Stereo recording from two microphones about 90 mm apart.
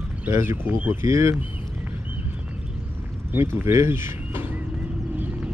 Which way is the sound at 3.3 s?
25° right (ahead or behind).